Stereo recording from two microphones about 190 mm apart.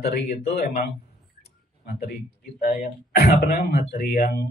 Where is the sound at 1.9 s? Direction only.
55° left (ahead or behind).